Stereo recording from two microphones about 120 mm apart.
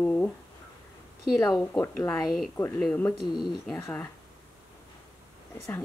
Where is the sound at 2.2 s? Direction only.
Centre (ahead or behind).